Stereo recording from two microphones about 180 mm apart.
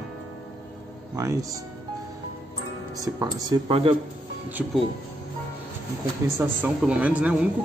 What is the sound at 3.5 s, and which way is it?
Speech, 20° right (ahead or behind).